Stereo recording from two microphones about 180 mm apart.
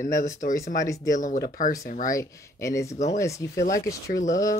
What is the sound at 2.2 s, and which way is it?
Speech, 15° left (ahead or behind).